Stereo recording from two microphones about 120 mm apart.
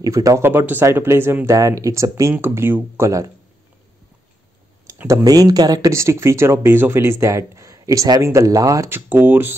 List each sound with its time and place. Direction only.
0.0 s speech: 30° right (ahead or behind)
4.8 s speech: 25° right (ahead or behind)